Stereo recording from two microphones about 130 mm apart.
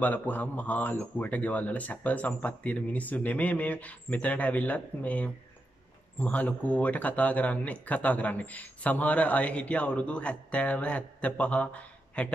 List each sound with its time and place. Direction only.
0.0 s speech: 15° left (ahead or behind)